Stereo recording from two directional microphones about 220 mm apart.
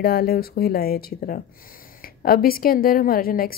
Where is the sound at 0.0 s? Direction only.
45° left (ahead or behind).